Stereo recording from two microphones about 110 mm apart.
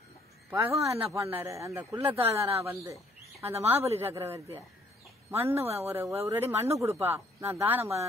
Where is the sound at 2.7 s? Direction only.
25° right (ahead or behind).